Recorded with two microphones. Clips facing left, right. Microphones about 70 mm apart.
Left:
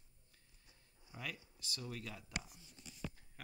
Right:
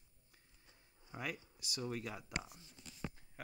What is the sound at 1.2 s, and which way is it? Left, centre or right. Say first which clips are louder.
Speech: right 3 dB; right.